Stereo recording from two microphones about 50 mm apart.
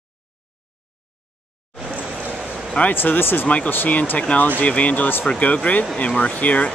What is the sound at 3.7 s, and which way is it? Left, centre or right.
Speech, left.